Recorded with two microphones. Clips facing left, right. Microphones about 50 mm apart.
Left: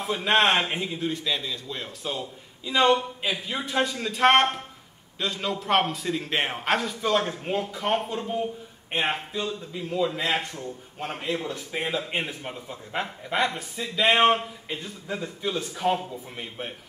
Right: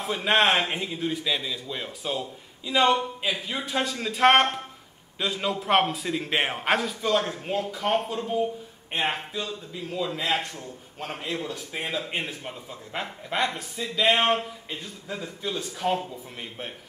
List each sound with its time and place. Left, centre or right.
0.0 s a man's voice: centre